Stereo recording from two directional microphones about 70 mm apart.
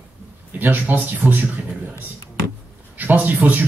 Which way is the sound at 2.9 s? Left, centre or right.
Right.